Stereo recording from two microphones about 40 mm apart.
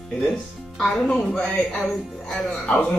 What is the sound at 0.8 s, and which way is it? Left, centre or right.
Speech, centre.